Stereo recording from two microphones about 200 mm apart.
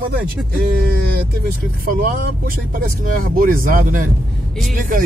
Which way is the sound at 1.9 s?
45° right (ahead or behind).